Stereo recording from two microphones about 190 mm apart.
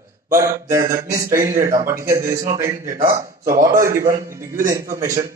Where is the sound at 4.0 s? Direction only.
45° right (ahead or behind).